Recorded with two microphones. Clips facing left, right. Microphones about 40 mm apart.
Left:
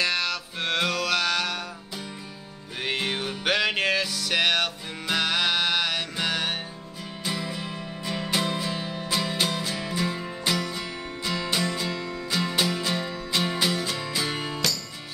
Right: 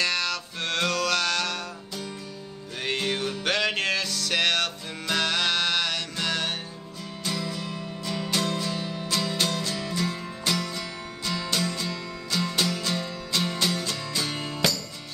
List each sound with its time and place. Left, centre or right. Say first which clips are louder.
0.0 s music: left 1 dB; centre
2.8 s music: even; centre